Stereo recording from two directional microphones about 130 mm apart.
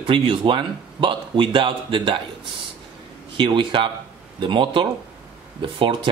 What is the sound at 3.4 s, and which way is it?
Speech, 40° right (ahead or behind).